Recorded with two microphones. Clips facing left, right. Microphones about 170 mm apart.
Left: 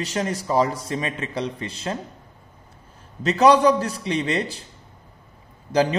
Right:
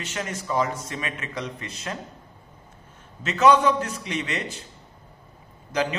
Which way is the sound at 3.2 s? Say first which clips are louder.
Left 3 dB; 35° left (ahead or behind).